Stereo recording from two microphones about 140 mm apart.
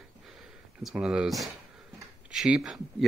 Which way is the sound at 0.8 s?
5° right (ahead or behind).